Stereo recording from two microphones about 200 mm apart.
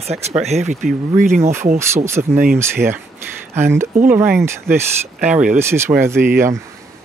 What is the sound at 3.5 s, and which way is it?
Speech, 10° right (ahead or behind).